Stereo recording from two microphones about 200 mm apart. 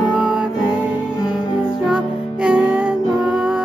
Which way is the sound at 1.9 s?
5° right (ahead or behind).